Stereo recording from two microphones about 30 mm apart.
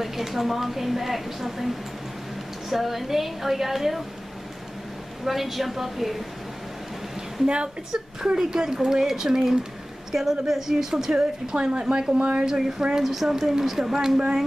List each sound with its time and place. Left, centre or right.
0.0 s a woman's voice: centre
2.7 s a woman's voice: centre
5.2 s a woman's voice: centre
7.4 s a woman's voice: right
8.4 s a woman's voice: centre
11.5 s speech: right
13.0 s a woman's voice: centre
13.9 s speech: right